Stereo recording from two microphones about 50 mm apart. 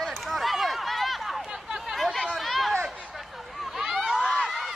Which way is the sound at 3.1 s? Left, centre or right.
Centre.